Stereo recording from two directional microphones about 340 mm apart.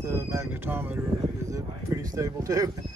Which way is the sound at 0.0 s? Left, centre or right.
Centre.